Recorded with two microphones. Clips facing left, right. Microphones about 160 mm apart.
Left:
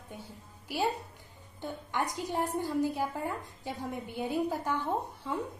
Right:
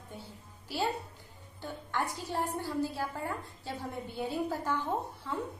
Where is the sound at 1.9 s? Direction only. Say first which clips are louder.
Left 1 dB; 15° left (ahead or behind).